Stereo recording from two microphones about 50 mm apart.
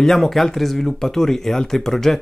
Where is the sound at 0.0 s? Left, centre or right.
Centre.